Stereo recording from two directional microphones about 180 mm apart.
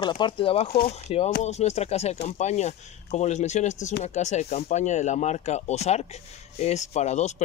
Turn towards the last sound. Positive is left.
turn(degrees=40)  # may be behind; listen again after turning